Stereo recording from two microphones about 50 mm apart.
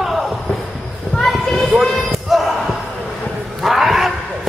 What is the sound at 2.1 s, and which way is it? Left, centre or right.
Slam, centre.